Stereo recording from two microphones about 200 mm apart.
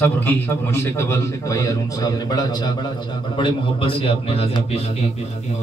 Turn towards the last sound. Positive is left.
turn(degrees=30)  # may be behind; listen again after turning